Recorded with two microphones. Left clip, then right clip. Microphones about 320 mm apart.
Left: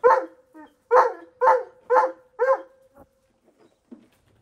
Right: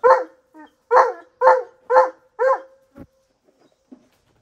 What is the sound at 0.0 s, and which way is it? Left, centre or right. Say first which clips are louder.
Dog: right 3 dB; right.